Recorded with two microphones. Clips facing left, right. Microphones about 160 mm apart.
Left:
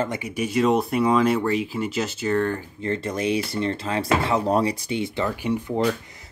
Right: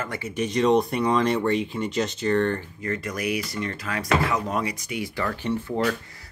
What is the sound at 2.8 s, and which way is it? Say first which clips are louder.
Speech: left 4 dB; 30° left (ahead or behind).